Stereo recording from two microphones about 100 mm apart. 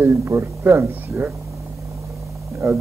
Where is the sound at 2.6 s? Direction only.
25° right (ahead or behind).